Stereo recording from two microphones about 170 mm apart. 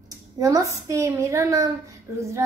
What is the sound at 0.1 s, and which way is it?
A child's voice, 20° right (ahead or behind).